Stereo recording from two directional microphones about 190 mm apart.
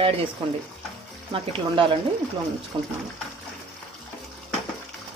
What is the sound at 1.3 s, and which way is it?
Speech, 25° right (ahead or behind).